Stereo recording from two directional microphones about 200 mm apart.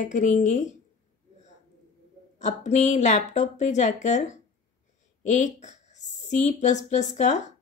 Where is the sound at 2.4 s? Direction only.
35° left (ahead or behind).